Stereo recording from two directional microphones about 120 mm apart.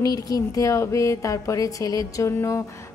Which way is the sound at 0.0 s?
30° left (ahead or behind).